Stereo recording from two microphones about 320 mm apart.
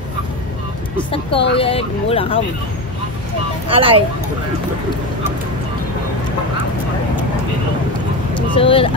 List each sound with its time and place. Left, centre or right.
0.9 s speech: centre
3.6 s speech: centre
8.5 s speech: centre